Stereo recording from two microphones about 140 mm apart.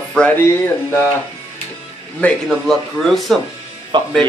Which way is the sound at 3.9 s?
35° right (ahead or behind).